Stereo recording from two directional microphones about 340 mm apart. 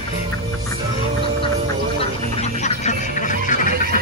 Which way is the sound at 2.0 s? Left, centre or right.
Centre.